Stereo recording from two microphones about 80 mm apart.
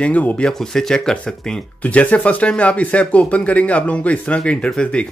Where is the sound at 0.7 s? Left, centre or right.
Centre.